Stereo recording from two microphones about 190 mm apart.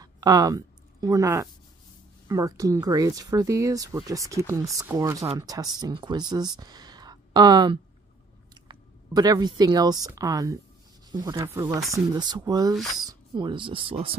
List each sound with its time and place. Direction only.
0.0 s a sound: 20° right (ahead or behind)
2.2 s speech: 15° right (ahead or behind)
12.7 s speech: centre (ahead or behind)
13.0 s speech: 20° right (ahead or behind)